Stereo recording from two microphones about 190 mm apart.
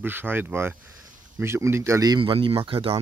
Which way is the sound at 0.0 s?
10° right (ahead or behind).